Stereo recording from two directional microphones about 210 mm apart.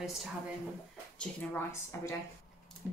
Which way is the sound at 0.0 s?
Centre (ahead or behind).